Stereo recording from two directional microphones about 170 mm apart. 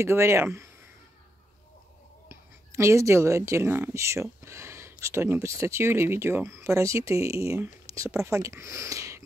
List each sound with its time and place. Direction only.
0.0 s speech: 15° right (ahead or behind)
2.2 s speech: 15° right (ahead or behind)